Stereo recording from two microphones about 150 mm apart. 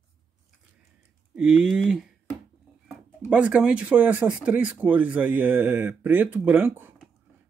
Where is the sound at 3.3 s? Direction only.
5° right (ahead or behind).